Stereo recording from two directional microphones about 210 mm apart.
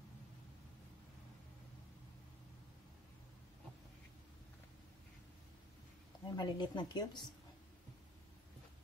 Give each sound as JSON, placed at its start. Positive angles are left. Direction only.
{"t": 6.2, "sound": "a woman's voice", "side_deg": 20}